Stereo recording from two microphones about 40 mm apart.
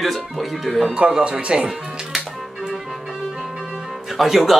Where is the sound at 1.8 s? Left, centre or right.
Centre.